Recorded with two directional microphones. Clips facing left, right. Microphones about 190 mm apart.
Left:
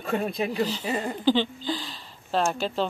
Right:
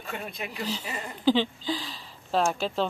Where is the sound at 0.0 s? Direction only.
35° left (ahead or behind).